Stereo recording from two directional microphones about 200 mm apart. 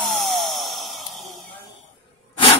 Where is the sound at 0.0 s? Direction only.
Centre (ahead or behind).